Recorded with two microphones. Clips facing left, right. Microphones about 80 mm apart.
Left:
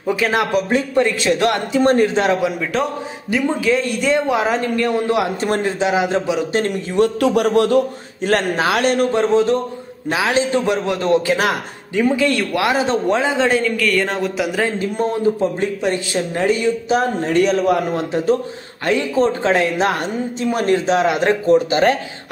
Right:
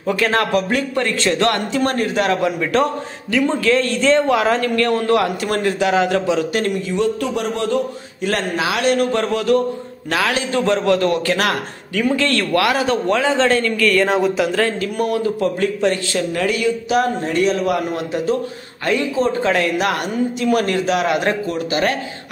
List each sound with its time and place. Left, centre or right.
0.0 s a man's voice: centre
2.4 s a man's voice: centre
3.3 s a man's voice: centre
6.7 s a man's voice: left
7.2 s speech: left
8.2 s a man's voice: left
9.1 s a man's voice: left; by 14.6 s centre
14.6 s a man's voice: left